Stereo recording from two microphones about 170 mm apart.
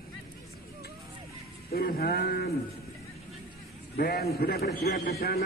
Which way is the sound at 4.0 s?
70° left (ahead or behind).